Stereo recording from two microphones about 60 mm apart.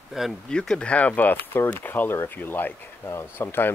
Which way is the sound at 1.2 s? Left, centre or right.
Left.